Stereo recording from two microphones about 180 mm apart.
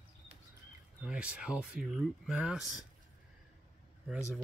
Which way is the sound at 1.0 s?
5° right (ahead or behind).